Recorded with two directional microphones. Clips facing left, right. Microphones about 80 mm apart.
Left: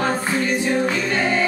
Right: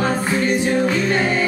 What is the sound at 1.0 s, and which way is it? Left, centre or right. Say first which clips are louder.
Music: right 2 dB; centre.